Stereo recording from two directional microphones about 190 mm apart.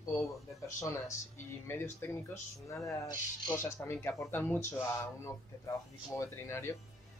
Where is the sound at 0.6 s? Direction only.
15° left (ahead or behind).